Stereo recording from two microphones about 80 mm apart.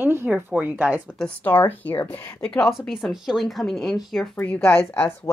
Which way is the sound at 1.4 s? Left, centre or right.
Left.